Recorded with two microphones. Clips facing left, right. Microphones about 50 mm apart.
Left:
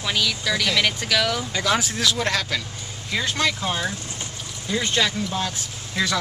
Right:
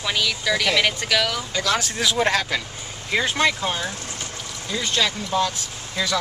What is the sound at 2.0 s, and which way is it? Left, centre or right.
Speech, centre.